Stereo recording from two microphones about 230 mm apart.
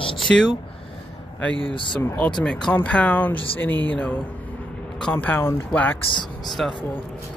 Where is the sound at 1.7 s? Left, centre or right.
Left.